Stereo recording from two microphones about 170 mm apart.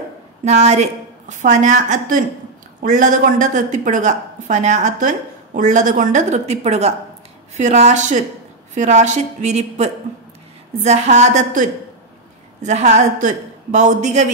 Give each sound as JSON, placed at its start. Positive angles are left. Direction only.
{"t": 0.5, "sound": "a woman's voice", "side_deg": -40}